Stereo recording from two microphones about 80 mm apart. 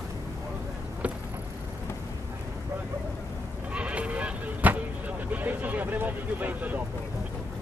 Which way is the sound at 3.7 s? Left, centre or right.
Centre.